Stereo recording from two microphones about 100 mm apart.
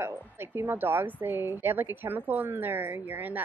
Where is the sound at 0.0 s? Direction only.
20° right (ahead or behind).